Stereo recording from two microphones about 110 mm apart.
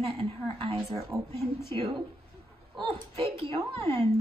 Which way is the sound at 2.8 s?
60° right (ahead or behind).